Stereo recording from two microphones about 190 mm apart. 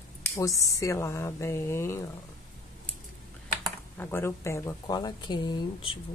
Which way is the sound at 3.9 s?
10° left (ahead or behind).